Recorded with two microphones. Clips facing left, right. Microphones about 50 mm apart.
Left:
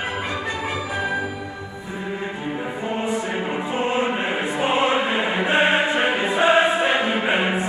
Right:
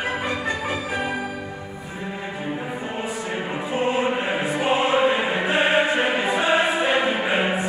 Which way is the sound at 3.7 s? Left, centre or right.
Left.